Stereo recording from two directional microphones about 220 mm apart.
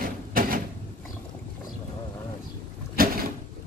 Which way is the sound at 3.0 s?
40° right (ahead or behind).